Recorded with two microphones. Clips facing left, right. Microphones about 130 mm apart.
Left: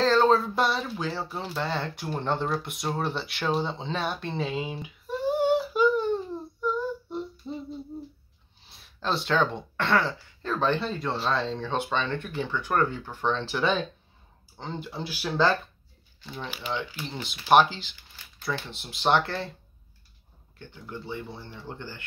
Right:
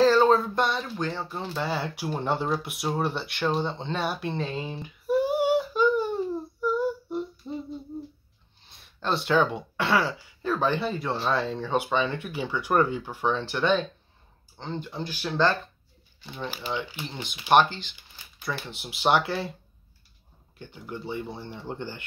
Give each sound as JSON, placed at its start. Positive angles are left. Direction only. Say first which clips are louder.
{"t": 0.0, "sound": "speech", "louder": "right 2 dB", "side_deg": 0}
{"t": 5.0, "sound": "a sound", "louder": "right 2 dB", "side_deg": -10}
{"t": 5.6, "sound": "a sound", "louder": "even", "side_deg": 5}
{"t": 5.9, "sound": "a sound", "louder": "even", "side_deg": -10}
{"t": 8.6, "sound": "speech", "louder": "right 1 dB", "side_deg": 0}
{"t": 16.6, "sound": "speech", "louder": "even", "side_deg": -30}
{"t": 17.1, "sound": "speech", "louder": "left 1 dB", "side_deg": 5}
{"t": 18.4, "sound": "speech", "louder": "left 1 dB", "side_deg": -5}
{"t": 20.5, "sound": "speech", "louder": "right 2 dB", "side_deg": -15}